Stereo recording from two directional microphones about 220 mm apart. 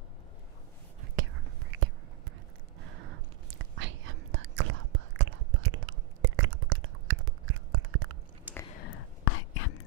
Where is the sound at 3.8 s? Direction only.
60° right (ahead or behind).